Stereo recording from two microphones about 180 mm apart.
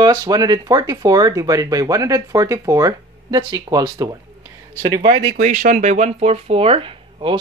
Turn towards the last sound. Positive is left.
turn(degrees=-30)  # may be behind; listen again after turning